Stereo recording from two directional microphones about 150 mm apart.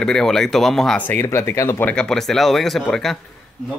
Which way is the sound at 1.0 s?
15° left (ahead or behind).